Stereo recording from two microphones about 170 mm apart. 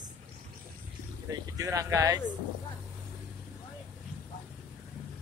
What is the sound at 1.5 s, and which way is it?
Speech, 20° right (ahead or behind).